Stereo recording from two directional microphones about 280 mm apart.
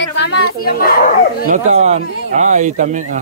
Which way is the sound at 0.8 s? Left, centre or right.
Left.